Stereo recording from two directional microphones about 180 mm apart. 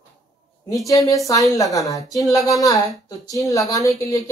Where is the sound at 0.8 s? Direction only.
20° left (ahead or behind).